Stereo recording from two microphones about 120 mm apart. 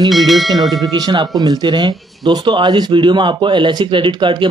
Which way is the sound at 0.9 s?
35° right (ahead or behind).